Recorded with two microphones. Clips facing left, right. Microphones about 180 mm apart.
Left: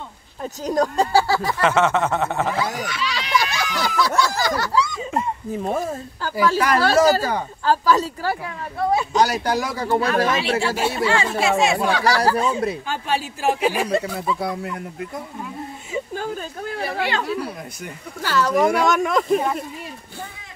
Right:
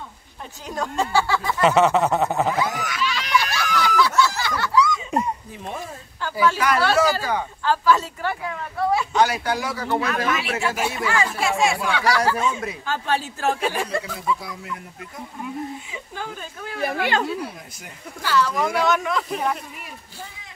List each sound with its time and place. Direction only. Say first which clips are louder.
0.4 s speech: left 8 dB; 40° left (ahead or behind)
1.6 s a sound: right 3 dB; 15° right (ahead or behind)
2.5 s speech: even; 30° left (ahead or behind)
3.1 s a sound: left 1 dB; 40° left (ahead or behind)
6.2 s speech: left 1 dB; 40° left (ahead or behind)
9.8 s speech: left 4 dB; 30° left (ahead or behind)
11.9 s speech: left 2 dB; 35° left (ahead or behind)
12.8 s speech: even; 15° left (ahead or behind)
14.4 s speech: left 8 dB; 60° left (ahead or behind)
15.9 s speech: left 7 dB; 45° left (ahead or behind)
16.8 s speech: right 2 dB; 50° right (ahead or behind)
18.2 s speech: left 3 dB; 45° left (ahead or behind)